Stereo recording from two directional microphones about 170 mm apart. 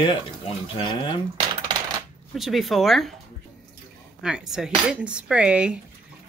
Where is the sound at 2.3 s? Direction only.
Centre (ahead or behind).